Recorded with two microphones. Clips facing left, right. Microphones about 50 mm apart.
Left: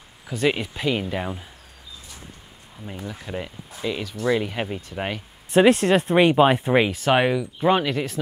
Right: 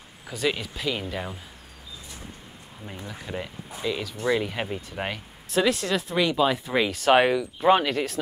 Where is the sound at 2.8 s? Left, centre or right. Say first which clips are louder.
Left 3 dB; centre.